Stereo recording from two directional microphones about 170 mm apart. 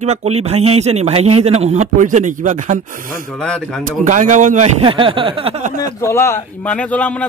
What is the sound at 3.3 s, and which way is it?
Speech, 5° left (ahead or behind).